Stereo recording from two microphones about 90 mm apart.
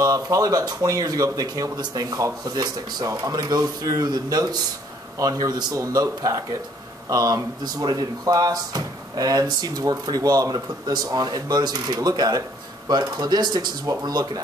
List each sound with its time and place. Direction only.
0.0 s speech: 40° right (ahead or behind)